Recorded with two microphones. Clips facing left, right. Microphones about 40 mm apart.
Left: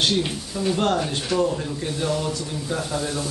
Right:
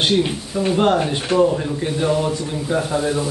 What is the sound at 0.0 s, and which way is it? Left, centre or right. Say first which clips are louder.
Speech: right 4 dB; centre.